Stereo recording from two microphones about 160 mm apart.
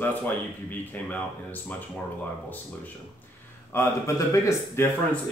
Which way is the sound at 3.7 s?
15° left (ahead or behind).